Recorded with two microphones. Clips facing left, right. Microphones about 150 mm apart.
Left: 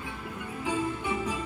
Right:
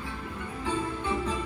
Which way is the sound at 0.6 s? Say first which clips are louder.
Left 1 dB; 10° left (ahead or behind).